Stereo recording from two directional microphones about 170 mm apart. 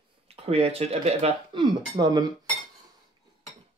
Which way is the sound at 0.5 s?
35° right (ahead or behind).